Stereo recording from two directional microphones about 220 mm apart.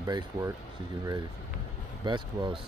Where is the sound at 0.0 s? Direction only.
15° right (ahead or behind).